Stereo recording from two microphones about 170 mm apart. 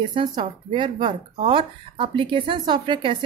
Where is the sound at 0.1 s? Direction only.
30° right (ahead or behind).